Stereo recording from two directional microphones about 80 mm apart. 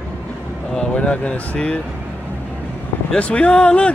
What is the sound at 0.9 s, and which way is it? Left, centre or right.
Speech, centre.